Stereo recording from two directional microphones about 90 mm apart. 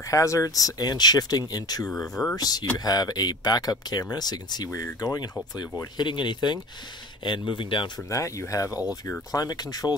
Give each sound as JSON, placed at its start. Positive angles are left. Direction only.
{"t": 0.1, "sound": "speech", "side_deg": 35}
{"t": 5.9, "sound": "speech", "side_deg": 60}
{"t": 8.1, "sound": "speech", "side_deg": 35}